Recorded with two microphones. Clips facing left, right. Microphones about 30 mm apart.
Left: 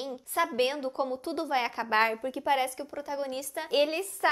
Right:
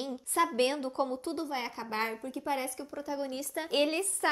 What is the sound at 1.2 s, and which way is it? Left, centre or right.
A woman's voice, left.